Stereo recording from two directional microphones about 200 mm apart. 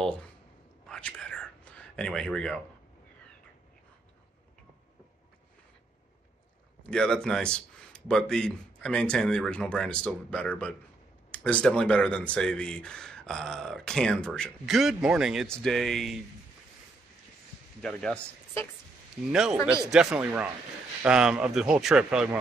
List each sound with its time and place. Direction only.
0.0 s a sound: 5° left (ahead or behind)
0.8 s whispering: 5° left (ahead or behind)
6.9 s speech: 5° left (ahead or behind)
17.8 s speech: 5° left (ahead or behind)
19.3 s speech: 5° right (ahead or behind)